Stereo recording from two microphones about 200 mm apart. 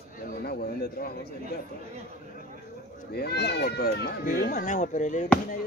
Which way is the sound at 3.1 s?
55° left (ahead or behind).